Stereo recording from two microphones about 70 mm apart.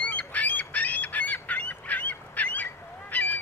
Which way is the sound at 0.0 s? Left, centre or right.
Left.